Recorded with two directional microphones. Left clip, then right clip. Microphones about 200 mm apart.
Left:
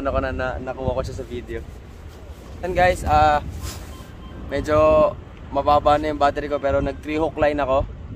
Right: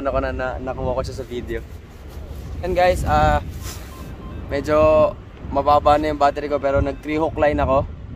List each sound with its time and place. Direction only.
0.0 s speech: 15° right (ahead or behind)
2.6 s speech: 5° left (ahead or behind)
4.5 s speech: 15° right (ahead or behind)